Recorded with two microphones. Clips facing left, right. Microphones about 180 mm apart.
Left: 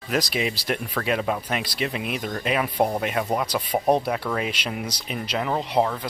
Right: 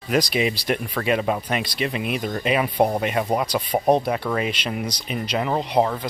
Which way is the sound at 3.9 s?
5° left (ahead or behind).